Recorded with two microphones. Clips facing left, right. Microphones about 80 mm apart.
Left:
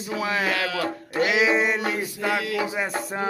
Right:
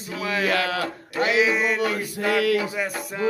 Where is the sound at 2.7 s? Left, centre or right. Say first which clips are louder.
Left 1 dB; left.